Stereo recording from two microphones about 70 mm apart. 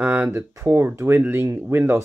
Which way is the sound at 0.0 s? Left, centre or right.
Right.